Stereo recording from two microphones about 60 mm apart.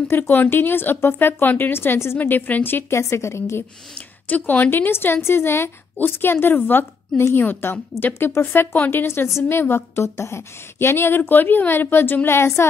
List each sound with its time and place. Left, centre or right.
0.1 s a woman's voice: left
2.1 s a woman's voice: left
3.0 s a woman's voice: left
4.3 s a woman's voice: left